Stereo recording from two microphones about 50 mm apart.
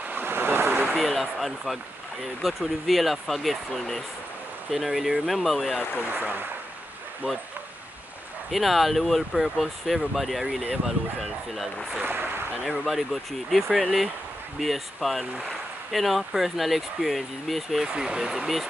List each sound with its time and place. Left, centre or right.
0.1 s vehicle: right
0.9 s speech: centre
5.9 s speech: right
8.5 s speech: centre
12.0 s speech: right
12.6 s speech: centre
18.0 s speech: centre